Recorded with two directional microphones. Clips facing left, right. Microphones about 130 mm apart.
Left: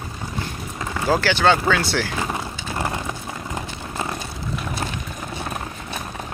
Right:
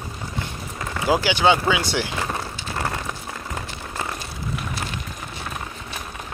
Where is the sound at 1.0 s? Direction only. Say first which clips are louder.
Even; 10° right (ahead or behind).